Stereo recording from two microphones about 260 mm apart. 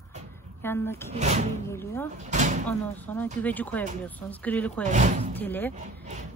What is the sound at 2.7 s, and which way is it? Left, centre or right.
Speech, centre.